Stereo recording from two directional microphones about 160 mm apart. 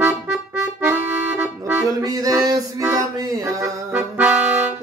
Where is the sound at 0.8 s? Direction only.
10° right (ahead or behind).